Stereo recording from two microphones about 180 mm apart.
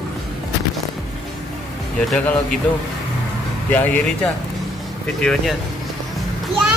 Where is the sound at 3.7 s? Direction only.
10° left (ahead or behind).